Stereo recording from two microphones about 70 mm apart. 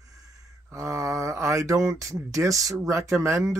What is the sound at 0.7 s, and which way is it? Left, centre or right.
Speech, right.